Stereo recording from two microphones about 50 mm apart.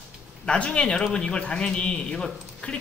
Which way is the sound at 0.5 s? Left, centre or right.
Left.